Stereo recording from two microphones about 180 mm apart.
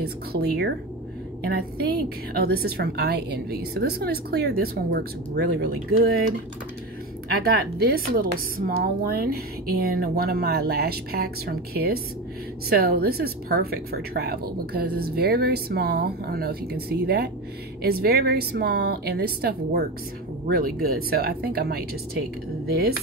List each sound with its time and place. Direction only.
0.0 s a woman's voice: 60° right (ahead or behind)
7.4 s a woman's voice: 55° right (ahead or behind)